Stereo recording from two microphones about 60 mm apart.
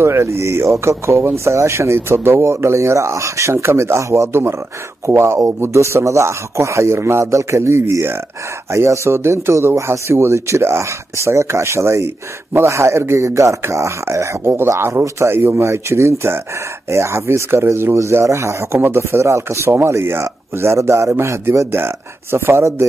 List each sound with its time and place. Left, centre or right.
0.0 s speech: right
19.7 s speech: right